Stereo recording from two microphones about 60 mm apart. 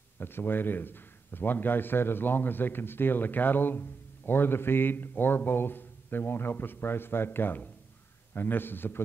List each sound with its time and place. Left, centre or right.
0.2 s a man's voice: left